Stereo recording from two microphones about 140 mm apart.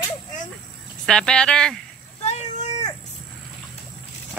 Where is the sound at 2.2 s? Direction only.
50° left (ahead or behind).